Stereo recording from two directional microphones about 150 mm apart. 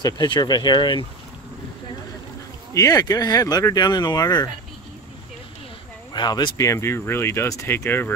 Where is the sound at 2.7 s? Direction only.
25° left (ahead or behind).